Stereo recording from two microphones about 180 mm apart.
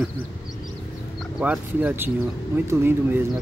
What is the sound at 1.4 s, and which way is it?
Speech, 10° right (ahead or behind).